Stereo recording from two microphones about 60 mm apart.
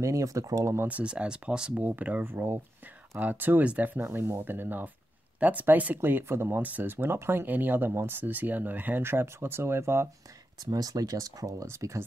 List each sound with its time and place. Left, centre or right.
0.0 s speech: right
0.8 s speech: right
1.8 s speech: right
5.9 s speech: right
6.6 s speech: right
10.6 s speech: right
11.6 s speech: right